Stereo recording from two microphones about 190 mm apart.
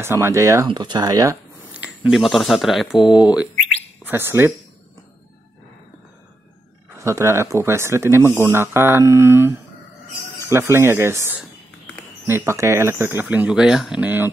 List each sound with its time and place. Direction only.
0.0 s speech: 15° right (ahead or behind)
1.7 s speech: 5° right (ahead or behind)
7.0 s speech: 15° right (ahead or behind)